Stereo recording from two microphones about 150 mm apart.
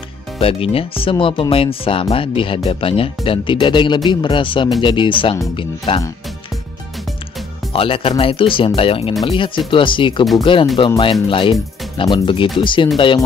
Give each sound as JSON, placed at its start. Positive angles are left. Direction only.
{"t": 0.4, "sound": "speech", "side_deg": 40}
{"t": 7.7, "sound": "speech", "side_deg": 40}